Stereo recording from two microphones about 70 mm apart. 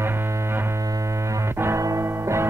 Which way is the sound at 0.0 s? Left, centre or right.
Right.